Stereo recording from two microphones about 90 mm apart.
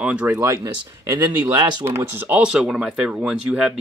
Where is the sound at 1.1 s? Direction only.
40° right (ahead or behind).